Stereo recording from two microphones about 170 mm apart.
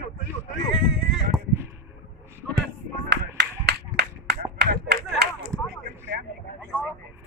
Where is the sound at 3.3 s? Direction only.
75° right (ahead or behind).